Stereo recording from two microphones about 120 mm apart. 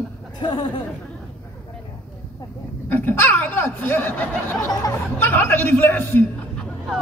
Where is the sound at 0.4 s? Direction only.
40° left (ahead or behind).